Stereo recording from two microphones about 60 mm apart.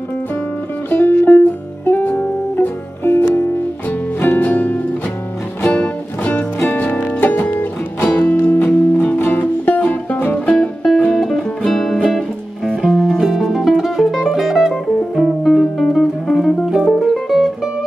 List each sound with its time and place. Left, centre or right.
0.8 s music: left; by 10.9 s centre
11.1 s music: centre